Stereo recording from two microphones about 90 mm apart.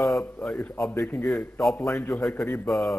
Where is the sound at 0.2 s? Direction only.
10° left (ahead or behind).